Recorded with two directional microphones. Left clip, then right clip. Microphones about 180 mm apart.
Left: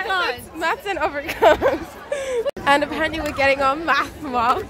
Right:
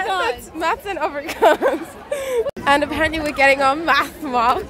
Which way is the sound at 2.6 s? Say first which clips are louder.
Right 1 dB; centre (ahead or behind).